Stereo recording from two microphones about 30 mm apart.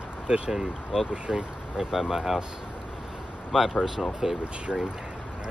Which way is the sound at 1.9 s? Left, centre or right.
Centre.